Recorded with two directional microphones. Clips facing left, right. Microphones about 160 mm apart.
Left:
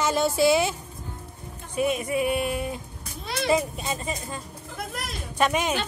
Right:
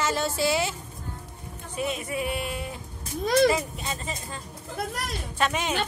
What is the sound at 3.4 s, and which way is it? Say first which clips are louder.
Speech: even; 25° left (ahead or behind).